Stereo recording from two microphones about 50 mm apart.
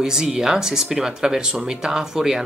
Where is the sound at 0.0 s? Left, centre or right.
Centre.